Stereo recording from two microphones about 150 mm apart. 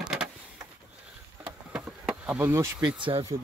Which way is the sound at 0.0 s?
5° right (ahead or behind).